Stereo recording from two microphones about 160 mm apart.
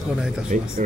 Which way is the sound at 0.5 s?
60° right (ahead or behind).